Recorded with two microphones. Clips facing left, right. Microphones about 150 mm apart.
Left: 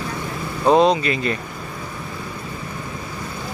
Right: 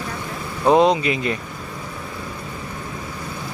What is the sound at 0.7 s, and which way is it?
Speech, 15° right (ahead or behind).